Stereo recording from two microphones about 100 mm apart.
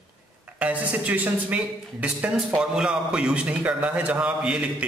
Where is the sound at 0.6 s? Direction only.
15° right (ahead or behind).